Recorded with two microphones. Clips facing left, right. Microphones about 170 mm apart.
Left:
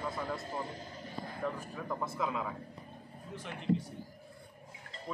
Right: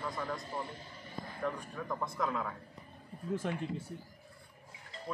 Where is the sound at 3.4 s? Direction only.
45° right (ahead or behind).